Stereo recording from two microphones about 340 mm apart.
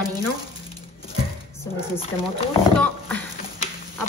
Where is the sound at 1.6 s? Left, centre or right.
Centre.